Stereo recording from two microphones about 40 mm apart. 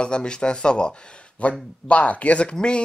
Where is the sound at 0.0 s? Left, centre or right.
Left.